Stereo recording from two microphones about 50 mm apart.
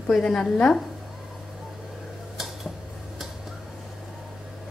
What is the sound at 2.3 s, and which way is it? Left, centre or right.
Tick-tock, centre.